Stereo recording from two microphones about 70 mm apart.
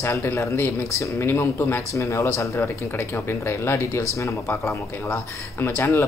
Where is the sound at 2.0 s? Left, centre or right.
Left.